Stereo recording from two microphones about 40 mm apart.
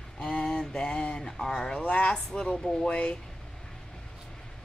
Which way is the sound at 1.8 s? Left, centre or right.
Left.